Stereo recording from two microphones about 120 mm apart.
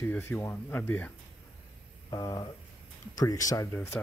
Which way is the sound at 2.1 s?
35° left (ahead or behind).